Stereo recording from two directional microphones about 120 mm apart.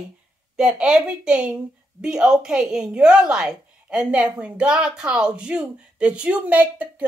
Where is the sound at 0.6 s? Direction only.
5° right (ahead or behind).